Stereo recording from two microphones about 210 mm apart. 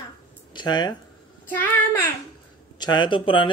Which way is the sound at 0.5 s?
20° left (ahead or behind).